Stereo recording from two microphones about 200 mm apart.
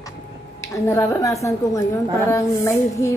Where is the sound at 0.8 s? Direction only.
10° left (ahead or behind).